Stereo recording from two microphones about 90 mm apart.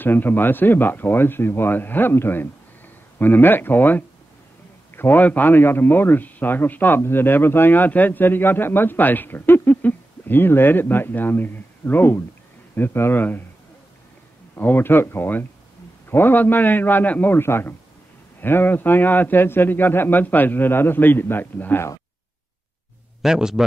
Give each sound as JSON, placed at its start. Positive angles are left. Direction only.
{"t": 0.0, "sound": "a man's voice", "side_deg": 20}
{"t": 14.5, "sound": "a man's voice", "side_deg": 20}
{"t": 23.2, "sound": "a man's voice", "side_deg": -5}